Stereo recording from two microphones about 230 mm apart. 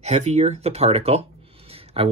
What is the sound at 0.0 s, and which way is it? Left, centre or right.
Speech, right.